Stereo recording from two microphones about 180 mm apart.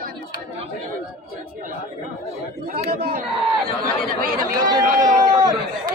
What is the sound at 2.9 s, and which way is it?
A man's voice, 55° right (ahead or behind).